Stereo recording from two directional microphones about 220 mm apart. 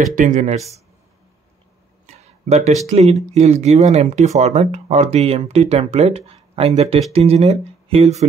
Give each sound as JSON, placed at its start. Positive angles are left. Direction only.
{"t": 0.1, "sound": "speech", "side_deg": -35}
{"t": 2.4, "sound": "speech", "side_deg": -30}